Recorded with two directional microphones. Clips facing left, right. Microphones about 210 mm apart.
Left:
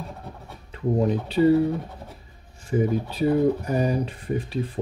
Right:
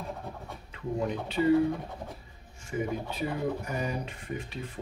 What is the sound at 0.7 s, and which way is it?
Speech, 35° left (ahead or behind).